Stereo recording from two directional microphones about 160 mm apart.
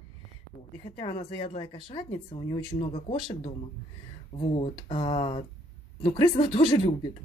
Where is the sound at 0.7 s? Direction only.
35° left (ahead or behind).